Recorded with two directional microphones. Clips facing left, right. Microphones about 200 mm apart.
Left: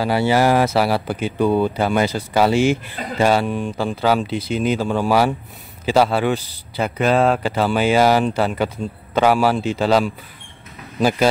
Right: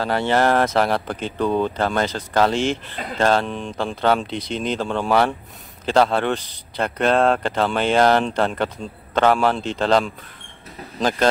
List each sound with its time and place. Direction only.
0.0 s speech: 5° left (ahead or behind)